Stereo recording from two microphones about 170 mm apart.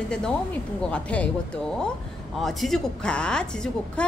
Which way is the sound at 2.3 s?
Centre (ahead or behind).